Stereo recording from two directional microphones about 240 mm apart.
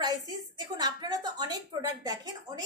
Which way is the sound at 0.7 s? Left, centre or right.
Centre.